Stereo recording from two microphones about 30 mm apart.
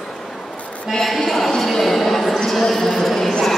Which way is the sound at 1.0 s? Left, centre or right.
Centre.